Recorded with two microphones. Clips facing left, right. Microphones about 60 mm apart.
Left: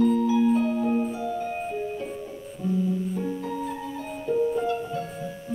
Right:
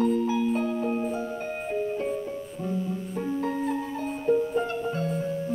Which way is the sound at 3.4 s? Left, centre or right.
Right.